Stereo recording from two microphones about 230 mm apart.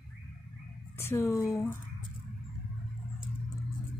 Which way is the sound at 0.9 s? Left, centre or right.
Centre.